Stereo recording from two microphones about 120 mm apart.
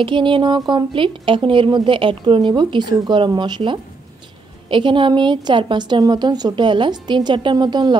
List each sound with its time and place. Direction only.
0.0 s a woman's voice: 45° right (ahead or behind)